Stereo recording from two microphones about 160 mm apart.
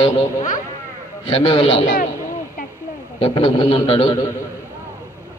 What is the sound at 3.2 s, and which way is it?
Speech, 35° left (ahead or behind).